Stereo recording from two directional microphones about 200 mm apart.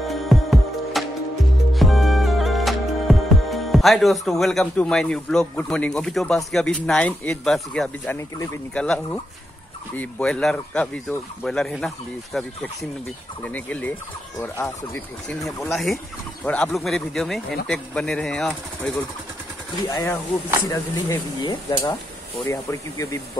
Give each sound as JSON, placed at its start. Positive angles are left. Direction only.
{"t": 0.1, "sound": "music", "side_deg": 0}
{"t": 9.9, "sound": "speech", "side_deg": 5}
{"t": 19.9, "sound": "speech", "side_deg": 15}